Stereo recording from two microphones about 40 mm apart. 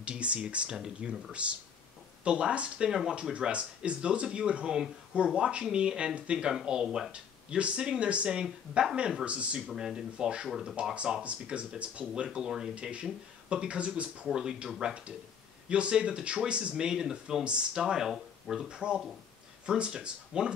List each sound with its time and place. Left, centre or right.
0.0 s speech: right
0.7 s speech: centre
2.2 s speech: right
2.9 s speech: centre
7.1 s speech: right
9.2 s speech: right
9.7 s speech: centre
15.7 s speech: right
18.7 s speech: right